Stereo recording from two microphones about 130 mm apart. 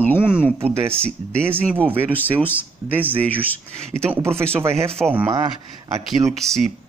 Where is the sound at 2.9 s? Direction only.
15° right (ahead or behind).